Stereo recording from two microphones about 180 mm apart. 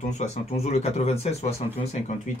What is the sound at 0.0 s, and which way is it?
Speech, 40° left (ahead or behind).